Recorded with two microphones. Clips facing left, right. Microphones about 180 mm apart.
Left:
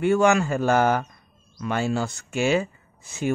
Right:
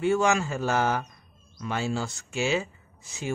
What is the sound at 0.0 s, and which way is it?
Speech, 60° left (ahead or behind).